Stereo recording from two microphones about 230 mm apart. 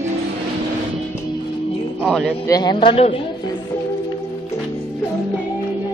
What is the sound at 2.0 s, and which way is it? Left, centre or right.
Music, centre.